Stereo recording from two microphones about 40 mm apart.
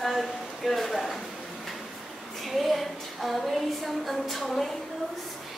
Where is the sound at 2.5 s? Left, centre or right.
Centre.